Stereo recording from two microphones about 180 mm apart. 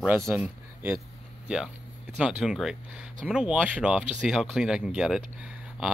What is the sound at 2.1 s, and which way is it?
Speech, 5° right (ahead or behind).